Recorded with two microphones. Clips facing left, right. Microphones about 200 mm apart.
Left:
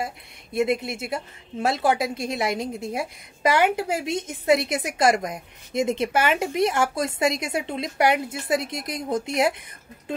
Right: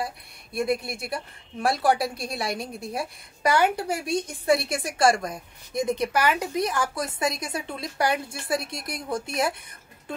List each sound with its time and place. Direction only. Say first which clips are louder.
0.0 s a woman's voice: left 1 dB; 20° left (ahead or behind)